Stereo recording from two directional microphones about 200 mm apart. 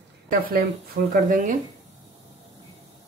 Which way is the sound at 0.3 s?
45° right (ahead or behind).